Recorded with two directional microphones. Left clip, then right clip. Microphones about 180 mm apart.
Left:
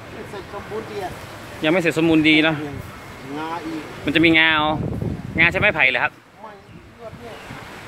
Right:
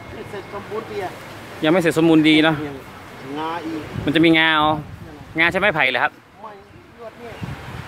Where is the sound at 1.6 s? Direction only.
25° right (ahead or behind).